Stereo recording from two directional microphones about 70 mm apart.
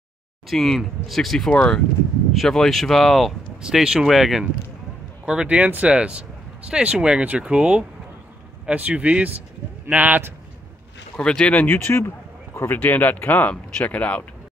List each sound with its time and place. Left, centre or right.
0.5 s speech: centre
3.6 s speech: centre; by 10.3 s right
11.1 s speech: centre
11.6 s speech: left
12.6 s speech: left